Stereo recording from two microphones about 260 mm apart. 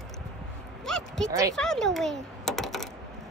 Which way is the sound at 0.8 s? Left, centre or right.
Centre.